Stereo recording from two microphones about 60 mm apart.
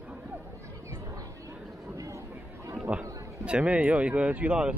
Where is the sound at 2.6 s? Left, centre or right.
Right.